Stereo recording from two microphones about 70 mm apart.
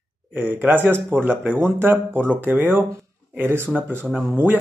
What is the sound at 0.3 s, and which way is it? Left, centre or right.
Speech, right.